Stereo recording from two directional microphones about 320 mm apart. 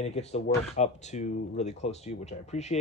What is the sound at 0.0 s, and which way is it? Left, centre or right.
Speech, centre.